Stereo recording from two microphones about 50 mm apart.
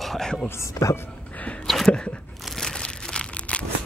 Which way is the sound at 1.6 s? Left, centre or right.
Centre.